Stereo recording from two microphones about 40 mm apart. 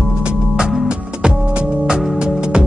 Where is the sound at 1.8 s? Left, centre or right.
Centre.